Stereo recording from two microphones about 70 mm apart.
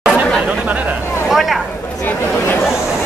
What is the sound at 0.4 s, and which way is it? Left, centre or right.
Speech, centre.